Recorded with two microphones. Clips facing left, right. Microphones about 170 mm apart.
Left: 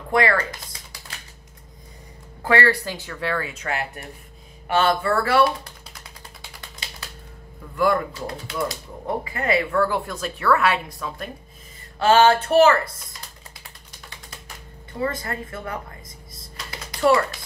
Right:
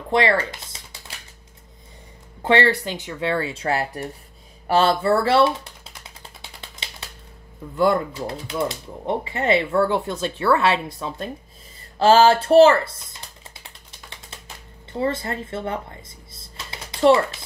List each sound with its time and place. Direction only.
0.1 s speech: 25° right (ahead or behind)
2.4 s speech: 25° right (ahead or behind)
7.7 s speech: 25° right (ahead or behind)
14.9 s a sound: 30° right (ahead or behind)